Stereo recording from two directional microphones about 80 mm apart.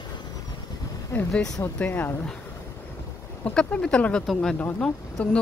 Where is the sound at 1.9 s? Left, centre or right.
Left.